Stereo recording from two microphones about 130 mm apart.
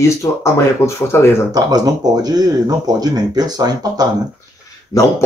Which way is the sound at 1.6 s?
30° right (ahead or behind).